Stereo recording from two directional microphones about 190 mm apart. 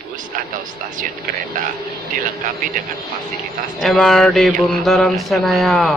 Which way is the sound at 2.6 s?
45° right (ahead or behind).